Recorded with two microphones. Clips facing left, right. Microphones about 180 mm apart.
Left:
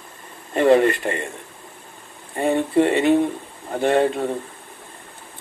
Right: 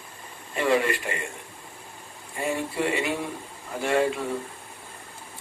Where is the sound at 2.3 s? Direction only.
35° left (ahead or behind).